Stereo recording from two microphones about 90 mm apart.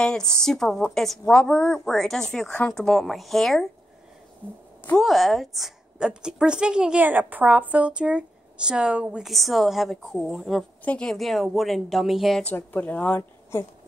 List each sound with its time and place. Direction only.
0.0 s a woman's voice: 5° left (ahead or behind)
5.0 s a woman's voice: centre (ahead or behind)
9.3 s a woman's voice: centre (ahead or behind)
10.8 s a woman's voice: 15° left (ahead or behind)
12.4 s speech: 20° left (ahead or behind)
13.5 s a sound: 25° left (ahead or behind)